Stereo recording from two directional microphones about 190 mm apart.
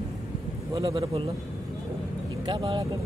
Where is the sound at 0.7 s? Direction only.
20° right (ahead or behind).